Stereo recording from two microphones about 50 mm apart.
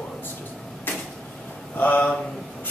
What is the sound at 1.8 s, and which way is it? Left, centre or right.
Speech, left.